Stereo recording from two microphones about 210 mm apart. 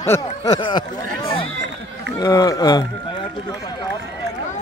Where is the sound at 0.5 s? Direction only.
20° left (ahead or behind).